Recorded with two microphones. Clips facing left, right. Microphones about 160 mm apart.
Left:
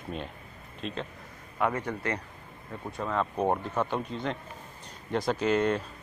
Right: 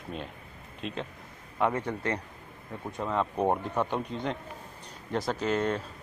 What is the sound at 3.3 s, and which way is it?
Speech, centre (ahead or behind).